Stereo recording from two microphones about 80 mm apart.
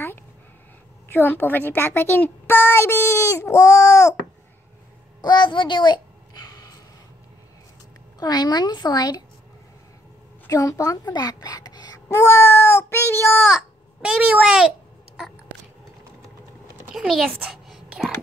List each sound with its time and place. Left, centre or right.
1.0 s a woman's voice: left
5.2 s a child's voice: left
8.2 s speech: left
10.5 s speech: left
12.2 s a child's voice: left
14.0 s a child's voice: centre
16.9 s a child's voice: centre
17.5 s a sound: centre